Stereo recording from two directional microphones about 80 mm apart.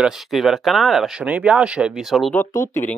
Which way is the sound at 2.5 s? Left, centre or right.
Left.